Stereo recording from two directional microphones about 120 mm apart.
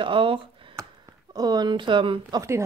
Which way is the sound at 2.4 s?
25° right (ahead or behind).